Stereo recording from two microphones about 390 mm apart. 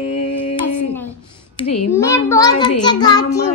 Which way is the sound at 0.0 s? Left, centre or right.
Left.